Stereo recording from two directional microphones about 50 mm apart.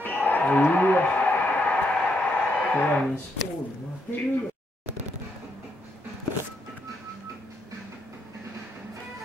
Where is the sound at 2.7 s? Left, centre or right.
Left.